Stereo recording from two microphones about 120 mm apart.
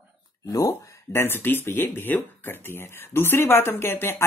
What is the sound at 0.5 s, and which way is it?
Speech, 25° left (ahead or behind).